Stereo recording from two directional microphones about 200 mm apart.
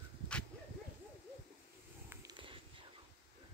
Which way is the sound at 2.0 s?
20° right (ahead or behind).